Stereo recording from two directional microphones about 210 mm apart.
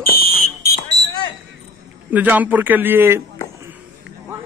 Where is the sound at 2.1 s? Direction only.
5° right (ahead or behind).